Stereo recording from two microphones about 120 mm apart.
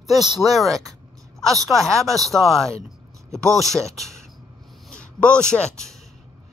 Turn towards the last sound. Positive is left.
turn(degrees=5)  # may be behind; listen again after turning